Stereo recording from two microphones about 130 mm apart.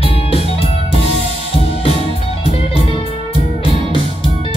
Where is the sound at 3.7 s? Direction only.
45° left (ahead or behind).